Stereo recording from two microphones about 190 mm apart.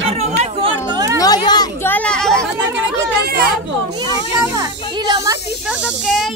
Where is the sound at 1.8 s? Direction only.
5° left (ahead or behind).